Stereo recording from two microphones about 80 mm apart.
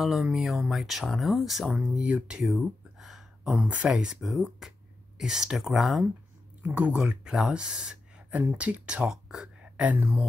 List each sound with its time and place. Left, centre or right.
0.0 s speech: centre
1.7 s speech: centre
3.6 s speech: centre
6.6 s speech: centre